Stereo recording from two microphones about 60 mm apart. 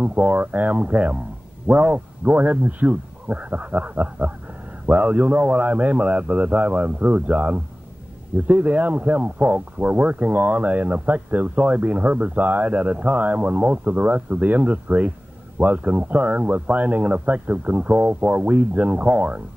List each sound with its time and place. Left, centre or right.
0.0 s speech: right